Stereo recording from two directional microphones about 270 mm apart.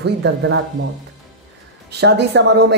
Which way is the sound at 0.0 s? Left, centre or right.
Right.